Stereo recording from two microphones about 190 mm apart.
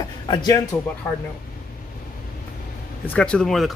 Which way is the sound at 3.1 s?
5° left (ahead or behind).